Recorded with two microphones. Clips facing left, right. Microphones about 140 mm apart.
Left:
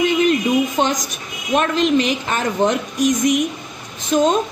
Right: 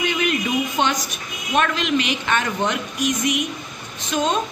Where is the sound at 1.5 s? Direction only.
35° left (ahead or behind).